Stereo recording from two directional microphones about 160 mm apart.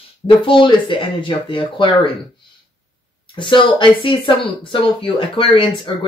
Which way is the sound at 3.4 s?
30° left (ahead or behind).